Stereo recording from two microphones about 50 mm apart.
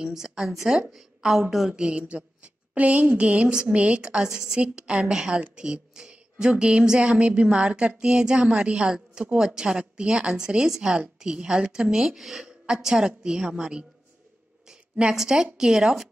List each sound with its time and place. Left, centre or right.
0.0 s speech: centre
0.7 s a woman's voice: centre
1.7 s a woman's voice: right
5.6 s a sound: centre
6.5 s a woman's voice: centre
14.7 s a sound: centre
15.1 s speech: centre